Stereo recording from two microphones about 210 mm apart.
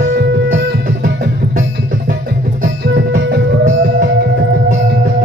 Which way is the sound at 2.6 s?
50° right (ahead or behind).